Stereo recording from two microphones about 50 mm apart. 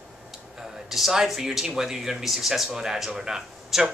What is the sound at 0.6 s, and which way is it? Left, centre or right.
Speech, centre.